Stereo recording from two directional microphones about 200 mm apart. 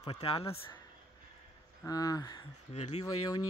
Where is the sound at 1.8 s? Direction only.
20° left (ahead or behind).